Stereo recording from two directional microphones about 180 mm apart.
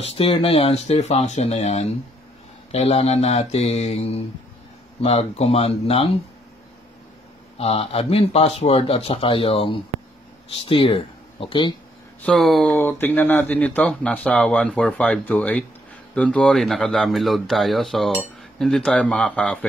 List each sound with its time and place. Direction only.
0.0 s speech: 35° left (ahead or behind)
7.5 s speech: 35° left (ahead or behind)
12.2 s speech: centre (ahead or behind)
12.7 s speech: 10° left (ahead or behind)